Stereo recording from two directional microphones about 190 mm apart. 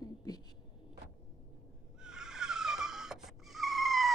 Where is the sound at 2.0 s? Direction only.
5° right (ahead or behind).